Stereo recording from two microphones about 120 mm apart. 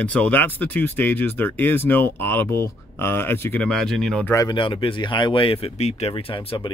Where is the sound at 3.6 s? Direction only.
5° left (ahead or behind).